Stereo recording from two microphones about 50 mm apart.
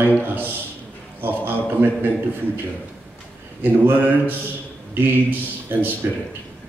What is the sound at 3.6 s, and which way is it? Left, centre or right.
Speech, right.